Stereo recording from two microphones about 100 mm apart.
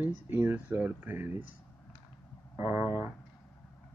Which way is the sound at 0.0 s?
20° right (ahead or behind).